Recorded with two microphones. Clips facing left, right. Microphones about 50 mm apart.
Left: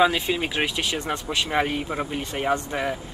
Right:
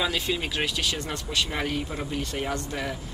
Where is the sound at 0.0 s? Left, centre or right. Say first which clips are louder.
Left 7 dB; left.